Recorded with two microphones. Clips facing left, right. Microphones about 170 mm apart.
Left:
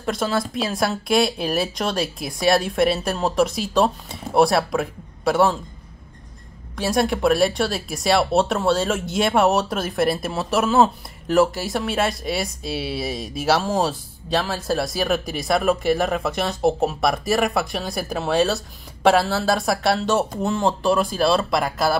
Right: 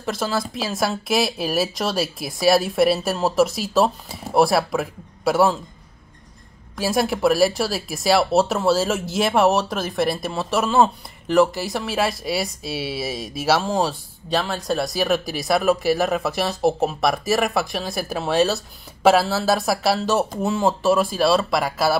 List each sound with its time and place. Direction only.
0.0 s speech: centre (ahead or behind)
6.8 s speech: centre (ahead or behind)